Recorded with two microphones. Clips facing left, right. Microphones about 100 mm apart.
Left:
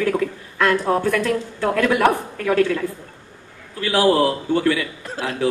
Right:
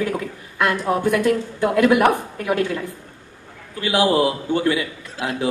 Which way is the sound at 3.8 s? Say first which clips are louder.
Left 1 dB; 15° right (ahead or behind).